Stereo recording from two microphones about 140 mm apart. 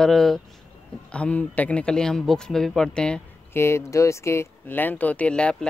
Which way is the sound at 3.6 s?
20° left (ahead or behind).